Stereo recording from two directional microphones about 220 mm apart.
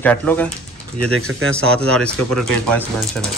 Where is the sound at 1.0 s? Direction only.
70° right (ahead or behind).